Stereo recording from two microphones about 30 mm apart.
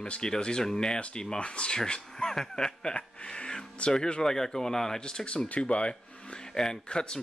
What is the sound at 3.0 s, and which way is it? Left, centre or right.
Speech, left.